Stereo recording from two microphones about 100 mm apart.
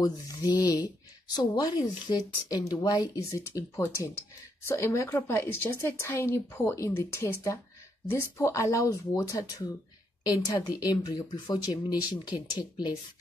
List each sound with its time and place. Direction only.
0.0 s a woman's voice: 40° left (ahead or behind)